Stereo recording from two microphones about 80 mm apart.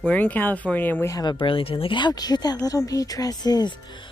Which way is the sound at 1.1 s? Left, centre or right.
Left.